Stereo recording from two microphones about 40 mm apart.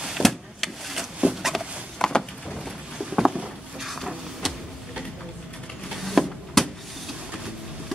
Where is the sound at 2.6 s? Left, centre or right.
Centre.